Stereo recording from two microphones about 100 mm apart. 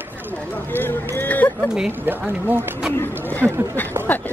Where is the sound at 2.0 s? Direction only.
15° right (ahead or behind).